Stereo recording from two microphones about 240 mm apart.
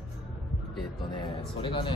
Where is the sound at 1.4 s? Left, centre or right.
Left.